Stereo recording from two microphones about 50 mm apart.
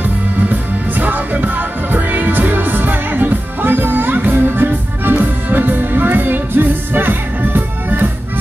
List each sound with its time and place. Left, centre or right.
0.5 s music: right